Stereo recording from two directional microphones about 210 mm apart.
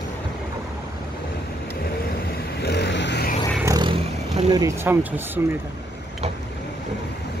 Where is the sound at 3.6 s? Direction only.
15° right (ahead or behind).